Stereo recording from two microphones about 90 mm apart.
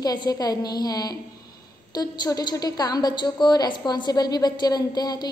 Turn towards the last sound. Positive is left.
turn(degrees=50)  # may be behind; listen again after turning